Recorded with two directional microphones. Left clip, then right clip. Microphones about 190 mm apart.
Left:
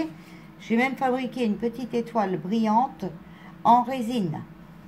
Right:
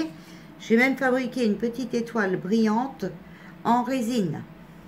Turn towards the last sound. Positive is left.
turn(degrees=5)  # may be behind; listen again after turning